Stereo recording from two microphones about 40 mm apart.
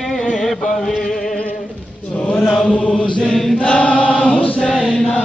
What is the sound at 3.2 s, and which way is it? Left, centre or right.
Chant, centre.